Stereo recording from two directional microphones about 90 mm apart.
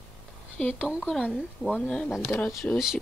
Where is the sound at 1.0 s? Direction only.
10° left (ahead or behind).